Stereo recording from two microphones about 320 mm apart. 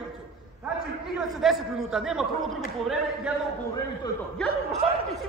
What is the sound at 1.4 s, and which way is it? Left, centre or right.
Speech, centre.